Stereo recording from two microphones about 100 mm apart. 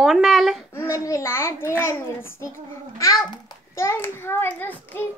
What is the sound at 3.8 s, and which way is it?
A child's voice, 25° left (ahead or behind).